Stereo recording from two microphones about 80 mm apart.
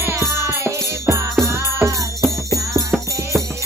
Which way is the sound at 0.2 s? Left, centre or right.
Right.